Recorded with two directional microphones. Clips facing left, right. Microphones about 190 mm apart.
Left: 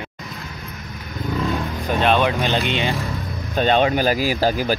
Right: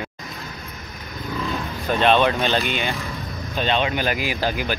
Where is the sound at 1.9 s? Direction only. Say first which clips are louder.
Right 1 dB; 10° left (ahead or behind); by 2.9 s 25° left (ahead or behind).